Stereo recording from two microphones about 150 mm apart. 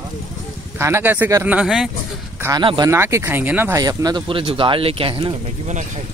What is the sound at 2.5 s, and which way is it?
Speech, 30° right (ahead or behind).